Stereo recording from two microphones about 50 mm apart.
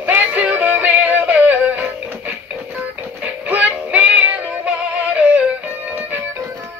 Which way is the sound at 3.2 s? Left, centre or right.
Right.